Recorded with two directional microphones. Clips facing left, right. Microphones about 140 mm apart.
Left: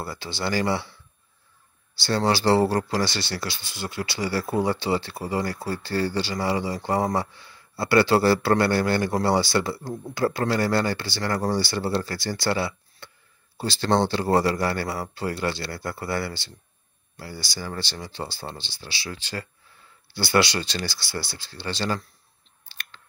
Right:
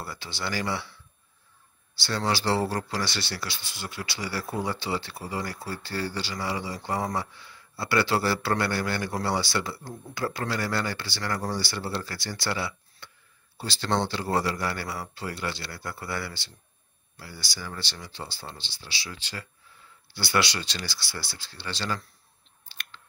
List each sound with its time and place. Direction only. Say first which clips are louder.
0.0 s a man's voice: left 5 dB; 35° left (ahead or behind)
2.0 s a man's voice: left 6 dB; 45° left (ahead or behind)
4.2 s a man's voice: left 7 dB; 45° left (ahead or behind)
18.8 s speech: left 5 dB; 55° left (ahead or behind)
20.7 s a man's voice: left 6 dB; 40° left (ahead or behind)